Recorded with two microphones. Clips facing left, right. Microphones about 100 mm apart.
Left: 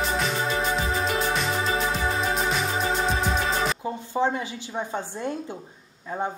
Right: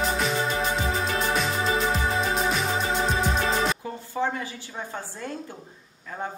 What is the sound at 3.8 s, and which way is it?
A woman's voice, 20° left (ahead or behind).